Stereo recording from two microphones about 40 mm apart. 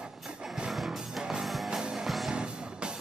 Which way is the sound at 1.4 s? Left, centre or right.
Centre.